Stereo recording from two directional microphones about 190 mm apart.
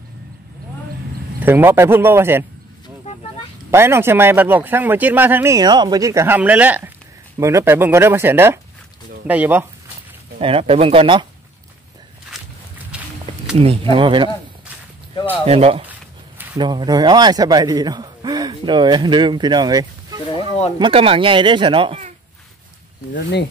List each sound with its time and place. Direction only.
1.4 s speech: 10° right (ahead or behind)
3.7 s speech: 15° right (ahead or behind)
10.4 s speech: 30° right (ahead or behind)
12.3 s walk: centre (ahead or behind)
13.6 s speech: 30° right (ahead or behind)
15.4 s speech: 30° right (ahead or behind)